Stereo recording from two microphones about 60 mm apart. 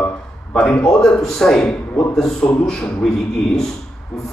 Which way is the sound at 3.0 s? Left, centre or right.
Centre.